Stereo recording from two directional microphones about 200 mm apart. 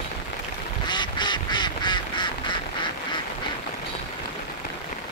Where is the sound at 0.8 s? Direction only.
20° left (ahead or behind).